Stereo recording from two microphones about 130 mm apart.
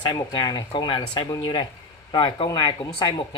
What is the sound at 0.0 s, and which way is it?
Speech, 35° left (ahead or behind).